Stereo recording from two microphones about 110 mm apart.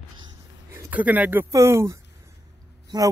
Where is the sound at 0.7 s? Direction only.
15° right (ahead or behind).